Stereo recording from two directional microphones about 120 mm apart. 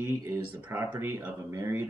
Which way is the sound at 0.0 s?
20° right (ahead or behind).